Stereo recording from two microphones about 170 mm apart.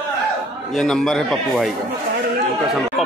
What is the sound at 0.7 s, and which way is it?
A man's voice, 5° left (ahead or behind).